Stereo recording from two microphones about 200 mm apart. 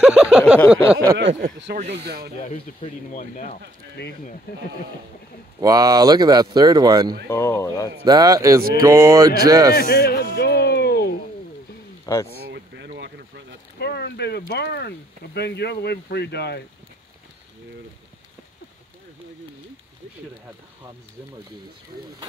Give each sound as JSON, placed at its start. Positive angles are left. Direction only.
{"t": 0.0, "sound": "a sound", "side_deg": -5}
{"t": 1.1, "sound": "speech", "side_deg": -60}
{"t": 2.4, "sound": "speech", "side_deg": 45}
{"t": 5.6, "sound": "speech", "side_deg": -20}
{"t": 7.2, "sound": "speech", "side_deg": 10}
{"t": 8.0, "sound": "speech", "side_deg": -20}
{"t": 9.8, "sound": "a sound", "side_deg": 45}
{"t": 12.1, "sound": "speech", "side_deg": 15}
{"t": 12.4, "sound": "boat", "side_deg": -60}
{"t": 13.7, "sound": "a sound", "side_deg": 55}
{"t": 14.5, "sound": "speech", "side_deg": 55}